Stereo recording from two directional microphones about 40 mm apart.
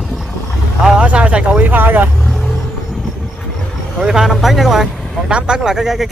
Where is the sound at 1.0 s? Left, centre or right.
Right.